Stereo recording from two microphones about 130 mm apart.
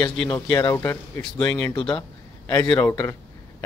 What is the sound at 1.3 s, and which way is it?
Speech, 10° left (ahead or behind).